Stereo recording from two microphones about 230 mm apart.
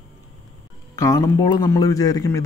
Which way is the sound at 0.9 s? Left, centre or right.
Centre.